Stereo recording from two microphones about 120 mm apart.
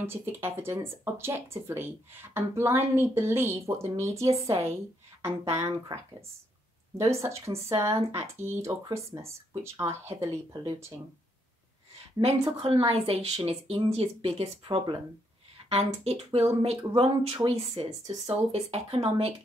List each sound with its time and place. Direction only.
0.0 s speech: 20° right (ahead or behind)
7.0 s speech: 25° right (ahead or behind)
12.5 s speech: 55° right (ahead or behind)